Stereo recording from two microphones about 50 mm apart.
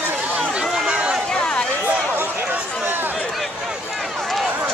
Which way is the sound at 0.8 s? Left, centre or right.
Centre.